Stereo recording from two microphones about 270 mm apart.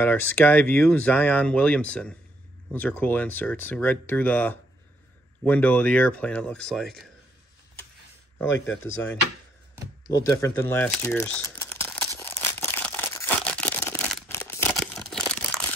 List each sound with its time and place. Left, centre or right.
0.0 s speech: centre
8.5 s speech: left
10.0 s crumpling: centre